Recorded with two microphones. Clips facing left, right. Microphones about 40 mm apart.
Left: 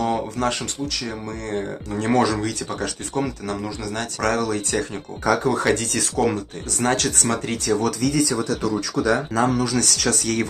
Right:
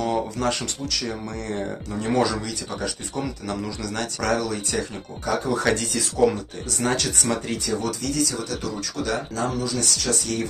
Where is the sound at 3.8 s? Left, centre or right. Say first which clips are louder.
Left 3 dB; left.